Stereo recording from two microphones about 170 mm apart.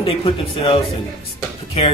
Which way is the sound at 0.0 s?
35° left (ahead or behind).